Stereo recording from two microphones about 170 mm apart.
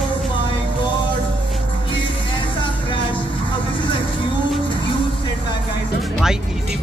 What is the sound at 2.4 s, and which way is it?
Vehicle, 30° left (ahead or behind).